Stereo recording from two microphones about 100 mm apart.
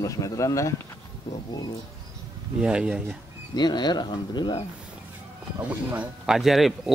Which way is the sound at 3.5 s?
45° left (ahead or behind).